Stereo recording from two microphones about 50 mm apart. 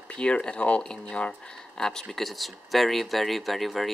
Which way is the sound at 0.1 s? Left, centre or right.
Centre.